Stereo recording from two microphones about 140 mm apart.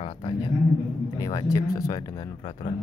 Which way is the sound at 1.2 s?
30° left (ahead or behind).